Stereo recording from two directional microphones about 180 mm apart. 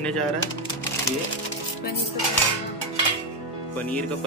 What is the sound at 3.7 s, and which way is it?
Speech, 10° left (ahead or behind).